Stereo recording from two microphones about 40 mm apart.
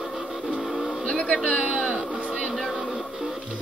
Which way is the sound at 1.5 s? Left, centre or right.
Centre.